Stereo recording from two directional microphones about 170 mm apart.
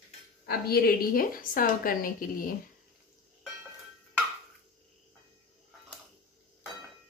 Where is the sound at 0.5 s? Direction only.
65° left (ahead or behind).